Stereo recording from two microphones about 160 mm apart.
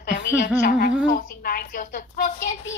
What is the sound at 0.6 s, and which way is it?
A woman's voice, 65° left (ahead or behind).